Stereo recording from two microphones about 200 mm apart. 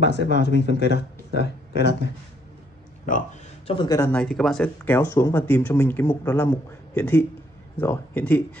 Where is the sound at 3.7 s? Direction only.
20° left (ahead or behind).